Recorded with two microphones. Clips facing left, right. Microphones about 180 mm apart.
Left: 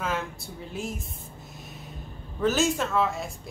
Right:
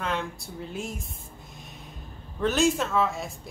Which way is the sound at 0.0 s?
5° left (ahead or behind).